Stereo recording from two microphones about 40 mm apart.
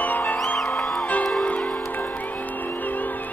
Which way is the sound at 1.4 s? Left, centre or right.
Left.